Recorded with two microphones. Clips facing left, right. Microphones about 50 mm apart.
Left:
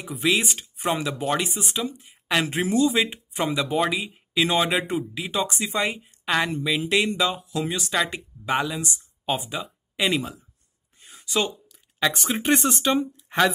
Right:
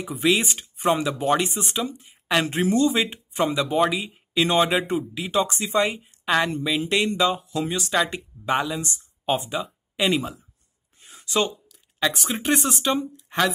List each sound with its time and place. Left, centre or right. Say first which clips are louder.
0.0 s speech: right 2 dB; centre
11.0 s a sound: right 2 dB; centre
12.1 s speech: left 2 dB; centre
12.9 s speech: left 2 dB; centre